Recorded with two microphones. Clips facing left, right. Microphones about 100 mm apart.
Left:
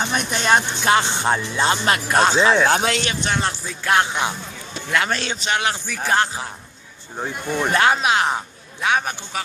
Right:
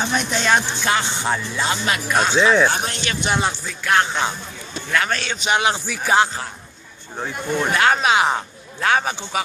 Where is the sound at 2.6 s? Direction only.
80° left.